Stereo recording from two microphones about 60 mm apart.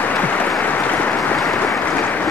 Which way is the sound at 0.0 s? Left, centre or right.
Left.